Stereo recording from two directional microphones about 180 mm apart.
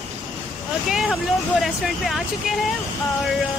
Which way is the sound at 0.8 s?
5° right (ahead or behind).